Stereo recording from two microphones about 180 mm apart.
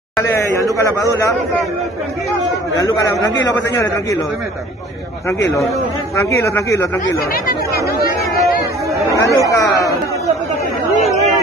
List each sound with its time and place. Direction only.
0.2 s a man's voice: 15° left (ahead or behind)
2.7 s speech: 20° left (ahead or behind)
6.1 s speech: 15° left (ahead or behind)
7.4 s chatter: 55° left (ahead or behind)
9.1 s speech: 20° left (ahead or behind)